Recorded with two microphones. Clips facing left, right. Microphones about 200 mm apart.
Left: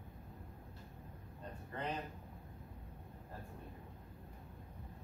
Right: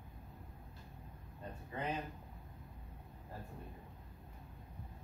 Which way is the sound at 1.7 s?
10° right (ahead or behind).